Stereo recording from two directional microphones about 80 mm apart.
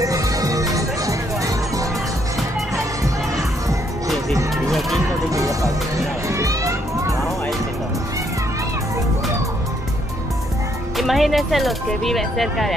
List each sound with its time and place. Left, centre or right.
0.0 s music: right
4.6 s music: centre
5.3 s music: right
11.0 s speech: centre